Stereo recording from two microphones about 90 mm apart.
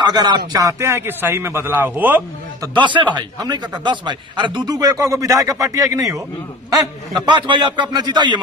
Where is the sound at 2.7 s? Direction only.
65° right (ahead or behind); by 6.2 s 35° right (ahead or behind).